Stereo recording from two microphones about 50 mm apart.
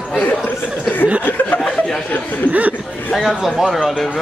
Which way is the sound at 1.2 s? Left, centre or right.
Left.